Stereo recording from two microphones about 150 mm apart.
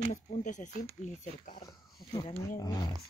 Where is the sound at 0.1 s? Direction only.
55° left (ahead or behind).